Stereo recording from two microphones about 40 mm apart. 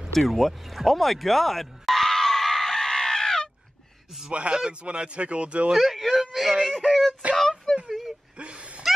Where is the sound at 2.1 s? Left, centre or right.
Centre.